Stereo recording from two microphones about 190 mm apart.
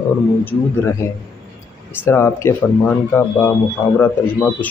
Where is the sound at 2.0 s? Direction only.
15° left (ahead or behind).